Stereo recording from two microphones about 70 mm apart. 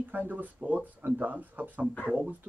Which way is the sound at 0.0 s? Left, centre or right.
Right.